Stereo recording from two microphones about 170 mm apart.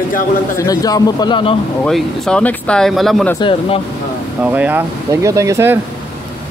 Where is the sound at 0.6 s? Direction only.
20° left (ahead or behind).